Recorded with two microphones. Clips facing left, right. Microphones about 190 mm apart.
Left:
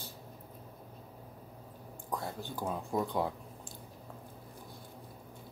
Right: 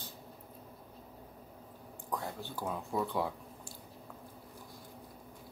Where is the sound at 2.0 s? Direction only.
15° left (ahead or behind).